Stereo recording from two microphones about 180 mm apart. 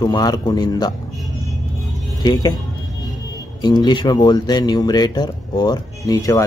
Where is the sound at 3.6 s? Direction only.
25° left (ahead or behind).